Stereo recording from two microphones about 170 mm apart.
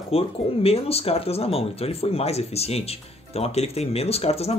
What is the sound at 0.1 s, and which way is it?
Speech, 35° left (ahead or behind).